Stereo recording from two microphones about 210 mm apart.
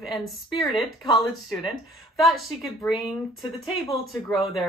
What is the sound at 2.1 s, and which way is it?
Speech, centre (ahead or behind).